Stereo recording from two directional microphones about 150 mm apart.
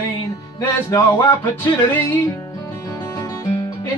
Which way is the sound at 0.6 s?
20° left (ahead or behind).